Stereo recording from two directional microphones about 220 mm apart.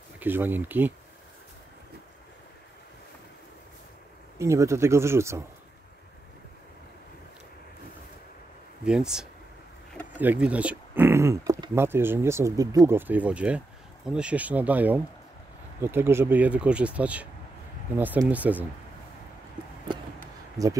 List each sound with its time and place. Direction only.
0.2 s speech: 10° right (ahead or behind)
4.4 s speech: 15° right (ahead or behind)
8.8 s speech: 5° right (ahead or behind)
20.6 s speech: 15° right (ahead or behind)